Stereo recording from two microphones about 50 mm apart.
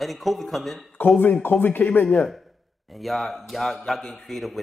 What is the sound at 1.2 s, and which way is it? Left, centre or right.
Speech, left.